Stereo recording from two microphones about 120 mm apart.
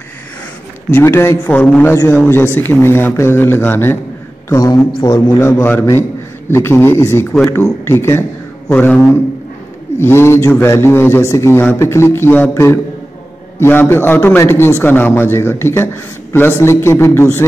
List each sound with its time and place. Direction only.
0.8 s a man's voice: 20° left (ahead or behind)
1.5 s a man's voice: 10° left (ahead or behind)